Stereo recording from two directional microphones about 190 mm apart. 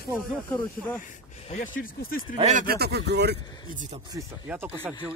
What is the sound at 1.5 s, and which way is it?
Speech, 35° left (ahead or behind).